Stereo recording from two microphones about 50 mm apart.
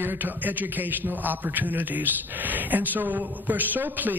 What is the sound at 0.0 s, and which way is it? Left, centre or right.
A man's voice, right.